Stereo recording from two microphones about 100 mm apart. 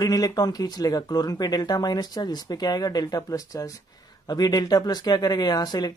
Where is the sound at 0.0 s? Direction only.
40° left (ahead or behind).